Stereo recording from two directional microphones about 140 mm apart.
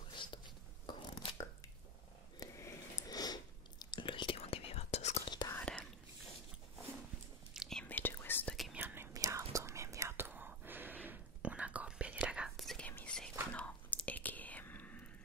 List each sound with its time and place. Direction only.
0.1 s writing: 35° left (ahead or behind)
0.9 s a sound: 35° left (ahead or behind)
2.4 s sniff: 20° left (ahead or behind)
3.8 s whispering: 35° left (ahead or behind); by 5.2 s 50° left (ahead or behind)
5.5 s whispering: 10° left (ahead or behind)
7.5 s whispering: centre (ahead or behind)
7.8 s whispering: 15° left (ahead or behind)
8.7 s whispering: 15° right (ahead or behind); by 15.0 s 10° left (ahead or behind)